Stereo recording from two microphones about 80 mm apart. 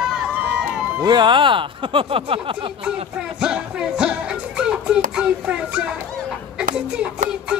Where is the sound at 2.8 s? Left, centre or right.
Centre.